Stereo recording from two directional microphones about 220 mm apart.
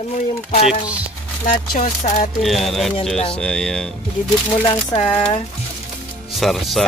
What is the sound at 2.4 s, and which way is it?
Speech, centre (ahead or behind).